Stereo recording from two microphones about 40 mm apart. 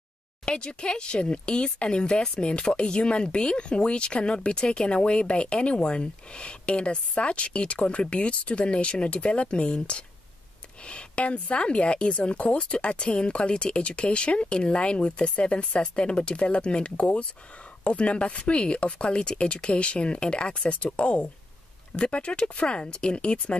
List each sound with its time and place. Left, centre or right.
0.5 s speech: left